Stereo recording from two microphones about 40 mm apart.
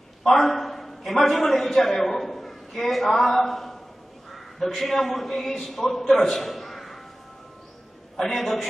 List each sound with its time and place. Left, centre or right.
0.2 s a man's voice: centre
8.2 s a man's voice: centre